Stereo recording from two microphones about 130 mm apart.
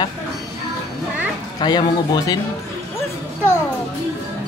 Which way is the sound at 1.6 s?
35° left (ahead or behind).